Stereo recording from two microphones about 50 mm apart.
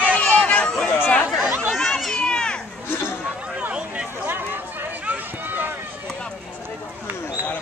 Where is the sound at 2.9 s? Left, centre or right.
Left.